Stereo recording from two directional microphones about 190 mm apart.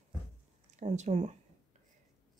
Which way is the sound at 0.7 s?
35° right (ahead or behind).